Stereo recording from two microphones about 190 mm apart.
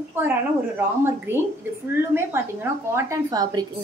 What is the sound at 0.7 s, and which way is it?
A woman's voice, 10° right (ahead or behind).